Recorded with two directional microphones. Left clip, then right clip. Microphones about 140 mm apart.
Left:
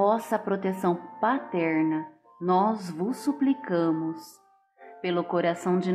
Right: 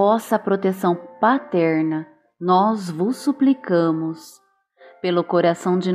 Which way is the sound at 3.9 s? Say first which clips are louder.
Right 5 dB; 25° right (ahead or behind).